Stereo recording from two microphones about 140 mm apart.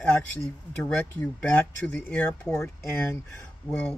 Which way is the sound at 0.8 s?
10° left (ahead or behind).